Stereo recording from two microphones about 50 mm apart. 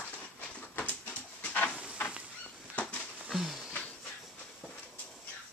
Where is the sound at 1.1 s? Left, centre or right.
Left.